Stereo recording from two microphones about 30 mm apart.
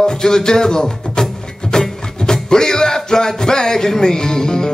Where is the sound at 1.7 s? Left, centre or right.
Left.